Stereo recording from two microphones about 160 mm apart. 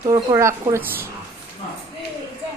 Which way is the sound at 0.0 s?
20° right (ahead or behind).